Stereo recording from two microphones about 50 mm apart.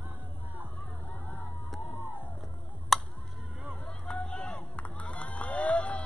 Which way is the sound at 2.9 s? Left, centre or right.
Centre.